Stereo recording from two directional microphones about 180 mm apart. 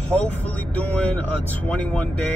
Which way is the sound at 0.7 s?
10° left (ahead or behind).